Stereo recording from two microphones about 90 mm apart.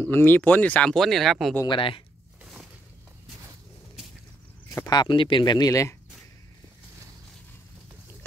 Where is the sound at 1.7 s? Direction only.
80° left.